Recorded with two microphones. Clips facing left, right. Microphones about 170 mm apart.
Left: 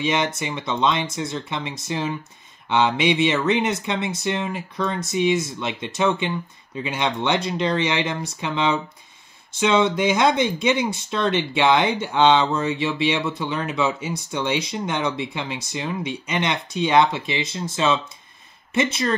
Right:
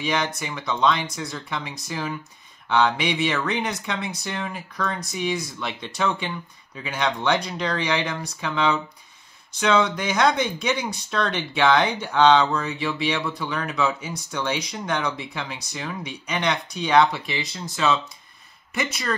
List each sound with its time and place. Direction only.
0.0 s speech: 20° left (ahead or behind)